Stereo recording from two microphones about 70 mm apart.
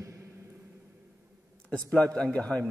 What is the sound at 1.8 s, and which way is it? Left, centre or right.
Speech, centre.